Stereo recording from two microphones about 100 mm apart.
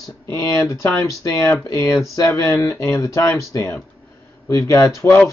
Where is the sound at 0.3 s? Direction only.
30° left (ahead or behind).